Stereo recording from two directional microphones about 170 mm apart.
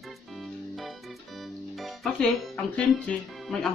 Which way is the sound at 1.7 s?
Centre (ahead or behind).